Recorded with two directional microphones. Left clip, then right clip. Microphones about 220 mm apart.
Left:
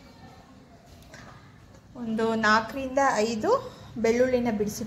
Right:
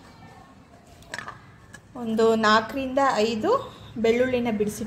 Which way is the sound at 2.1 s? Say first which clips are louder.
Right 4 dB; 15° right (ahead or behind).